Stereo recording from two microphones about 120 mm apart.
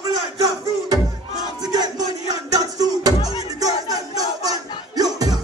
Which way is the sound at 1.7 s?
35° right (ahead or behind).